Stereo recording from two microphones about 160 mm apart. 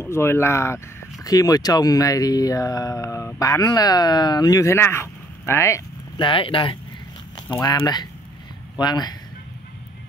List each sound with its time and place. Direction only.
0.0 s speech: 15° left (ahead or behind)
6.1 s speech: 30° left (ahead or behind)
7.4 s speech: 20° left (ahead or behind)